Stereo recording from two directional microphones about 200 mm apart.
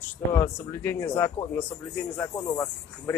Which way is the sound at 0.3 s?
15° left (ahead or behind).